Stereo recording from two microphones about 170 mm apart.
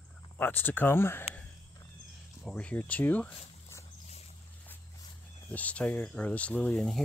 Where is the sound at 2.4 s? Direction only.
5° left (ahead or behind).